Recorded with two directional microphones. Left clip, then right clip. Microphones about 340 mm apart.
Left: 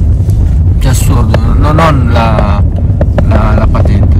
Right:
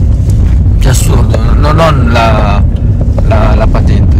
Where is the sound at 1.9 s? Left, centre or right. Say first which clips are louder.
Right 2 dB; centre.